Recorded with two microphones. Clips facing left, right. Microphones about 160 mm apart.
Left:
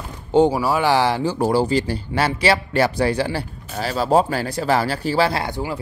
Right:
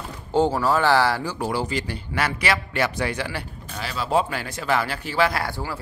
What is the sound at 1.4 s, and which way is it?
A man's voice, 35° left (ahead or behind).